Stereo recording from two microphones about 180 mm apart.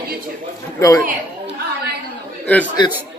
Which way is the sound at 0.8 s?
15° left (ahead or behind).